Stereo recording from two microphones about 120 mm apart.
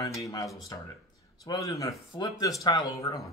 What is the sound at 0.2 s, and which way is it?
Speech, 25° left (ahead or behind).